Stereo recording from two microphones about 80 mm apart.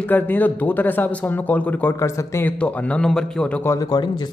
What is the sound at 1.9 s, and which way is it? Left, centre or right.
Speech, left.